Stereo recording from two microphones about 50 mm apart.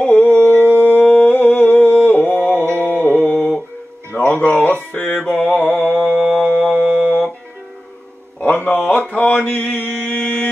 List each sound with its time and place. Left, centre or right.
0.0 s a sound: left
2.0 s mantra: left
4.1 s music: left
5.3 s mantra: left
6.6 s a sound: centre
7.0 s music: centre
8.4 s music: left
8.8 s mantra: left